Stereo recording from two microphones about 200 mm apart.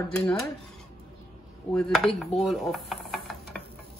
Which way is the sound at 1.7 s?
5° left (ahead or behind).